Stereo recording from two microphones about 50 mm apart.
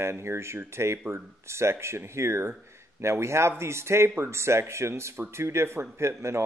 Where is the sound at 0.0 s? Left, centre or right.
Right.